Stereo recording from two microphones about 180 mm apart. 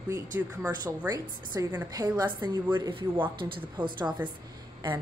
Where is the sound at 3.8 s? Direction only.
10° right (ahead or behind).